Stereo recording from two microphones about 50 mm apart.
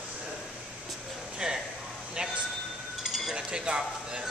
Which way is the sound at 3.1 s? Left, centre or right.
Centre.